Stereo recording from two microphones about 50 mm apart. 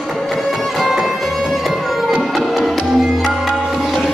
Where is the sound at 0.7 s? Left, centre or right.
Centre.